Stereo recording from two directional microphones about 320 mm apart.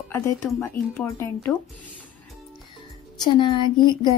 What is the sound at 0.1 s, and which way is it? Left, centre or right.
A woman's voice, centre.